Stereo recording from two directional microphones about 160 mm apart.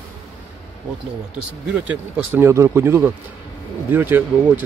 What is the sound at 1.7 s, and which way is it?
Speech, 10° right (ahead or behind).